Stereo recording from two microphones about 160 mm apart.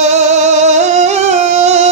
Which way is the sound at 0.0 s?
45° right (ahead or behind).